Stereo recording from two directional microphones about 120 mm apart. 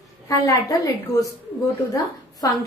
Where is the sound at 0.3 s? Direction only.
30° left (ahead or behind).